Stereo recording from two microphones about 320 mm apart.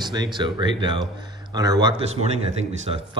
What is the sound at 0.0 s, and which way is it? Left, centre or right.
Speech, centre.